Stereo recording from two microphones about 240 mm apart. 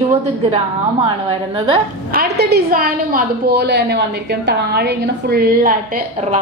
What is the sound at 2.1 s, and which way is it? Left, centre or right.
A woman's voice, right.